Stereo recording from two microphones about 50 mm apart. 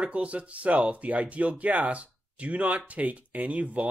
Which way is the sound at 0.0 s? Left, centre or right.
Right.